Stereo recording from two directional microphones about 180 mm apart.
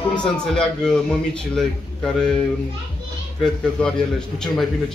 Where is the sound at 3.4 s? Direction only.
5° left (ahead or behind).